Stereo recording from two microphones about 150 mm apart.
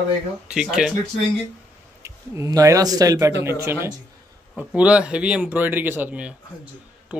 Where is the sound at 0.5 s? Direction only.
5° right (ahead or behind).